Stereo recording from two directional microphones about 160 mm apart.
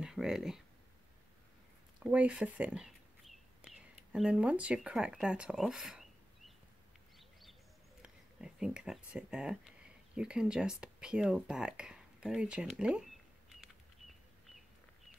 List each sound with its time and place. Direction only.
0.0 s speech: 5° right (ahead or behind)
2.0 s speech: 10° right (ahead or behind)
8.0 s speech: 5° right (ahead or behind)
13.6 s a sound: centre (ahead or behind)